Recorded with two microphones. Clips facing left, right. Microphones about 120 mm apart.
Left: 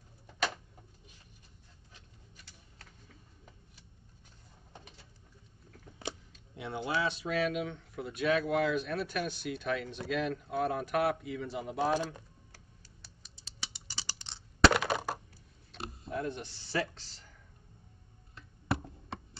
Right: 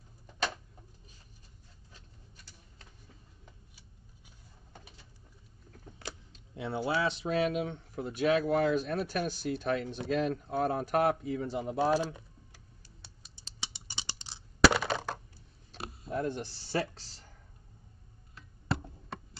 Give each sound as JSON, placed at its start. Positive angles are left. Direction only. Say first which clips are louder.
{"t": 6.5, "sound": "speech", "louder": "right 3 dB", "side_deg": -30}
{"t": 11.8, "sound": "speech", "louder": "right 2 dB", "side_deg": -10}
{"t": 13.6, "sound": "typing", "louder": "right 2 dB", "side_deg": -25}
{"t": 14.2, "sound": "coin", "louder": "right 1 dB", "side_deg": -5}
{"t": 14.9, "sound": "coin", "louder": "left 1 dB", "side_deg": 10}
{"t": 15.7, "sound": "speech", "louder": "right 2 dB", "side_deg": -35}